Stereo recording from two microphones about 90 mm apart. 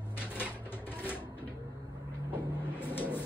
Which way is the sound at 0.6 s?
25° left (ahead or behind).